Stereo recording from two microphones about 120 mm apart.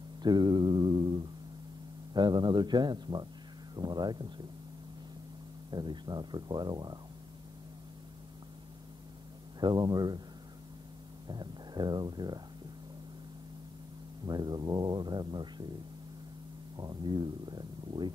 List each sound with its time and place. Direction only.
0.2 s plucked string instrument: 35° right (ahead or behind)
2.1 s speech: 40° right (ahead or behind)
5.7 s speech: 40° right (ahead or behind)
9.6 s speech: 35° right (ahead or behind)
11.2 s speech: 35° right (ahead or behind)
14.2 s speech: 35° right (ahead or behind)
16.7 s speech: 35° right (ahead or behind)